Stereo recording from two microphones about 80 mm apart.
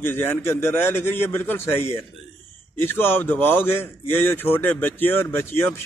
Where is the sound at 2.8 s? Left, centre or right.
Left.